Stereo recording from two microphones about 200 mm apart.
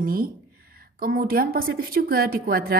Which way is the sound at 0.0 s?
45° right (ahead or behind).